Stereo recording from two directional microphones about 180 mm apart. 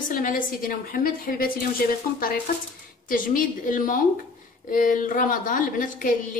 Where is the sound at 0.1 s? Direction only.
50° left (ahead or behind).